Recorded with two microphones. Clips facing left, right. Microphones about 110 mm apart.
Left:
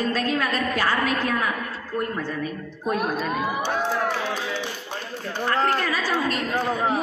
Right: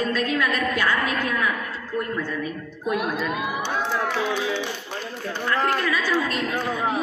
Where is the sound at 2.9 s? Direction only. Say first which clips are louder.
Even; 40° left (ahead or behind).